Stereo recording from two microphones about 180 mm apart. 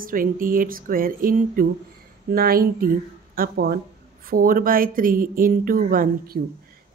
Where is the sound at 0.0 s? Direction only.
50° right (ahead or behind).